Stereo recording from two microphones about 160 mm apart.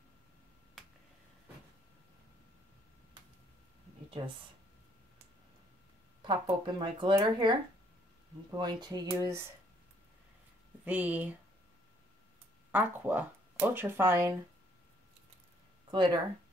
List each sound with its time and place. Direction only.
6.2 s speech: 30° right (ahead or behind)
10.9 s speech: 10° right (ahead or behind)
12.7 s speech: 10° right (ahead or behind)
15.9 s speech: 25° right (ahead or behind)